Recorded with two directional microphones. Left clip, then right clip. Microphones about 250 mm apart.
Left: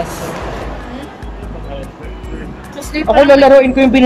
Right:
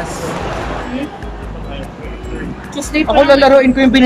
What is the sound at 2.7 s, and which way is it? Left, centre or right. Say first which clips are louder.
Speech: even; centre.